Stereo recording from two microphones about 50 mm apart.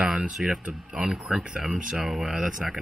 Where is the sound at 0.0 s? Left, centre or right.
Centre.